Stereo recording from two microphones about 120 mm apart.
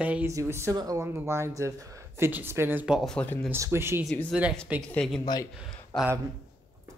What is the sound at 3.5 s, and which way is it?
Speech, 20° right (ahead or behind).